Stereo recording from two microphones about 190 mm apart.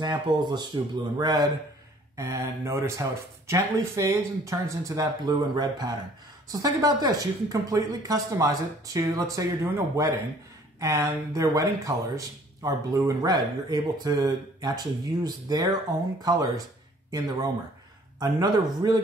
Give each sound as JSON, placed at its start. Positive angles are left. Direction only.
{"t": 0.3, "sound": "speech", "side_deg": -20}